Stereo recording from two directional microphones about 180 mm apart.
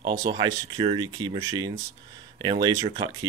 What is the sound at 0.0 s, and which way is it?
Speech, 25° right (ahead or behind).